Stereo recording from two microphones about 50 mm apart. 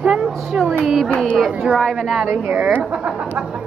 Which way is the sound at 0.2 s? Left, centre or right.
Centre.